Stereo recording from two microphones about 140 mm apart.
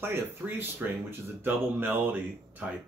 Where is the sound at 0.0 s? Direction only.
15° right (ahead or behind).